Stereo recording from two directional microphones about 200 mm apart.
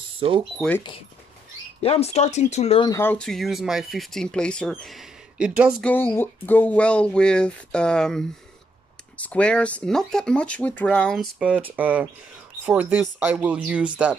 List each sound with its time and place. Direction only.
0.2 s speech: 25° right (ahead or behind)
0.6 s speech: 10° left (ahead or behind)
1.8 s speech: 30° left (ahead or behind)
2.9 s speech: 10° left (ahead or behind)
5.9 s speech: 10° left (ahead or behind); by 14.1 s 5° right (ahead or behind)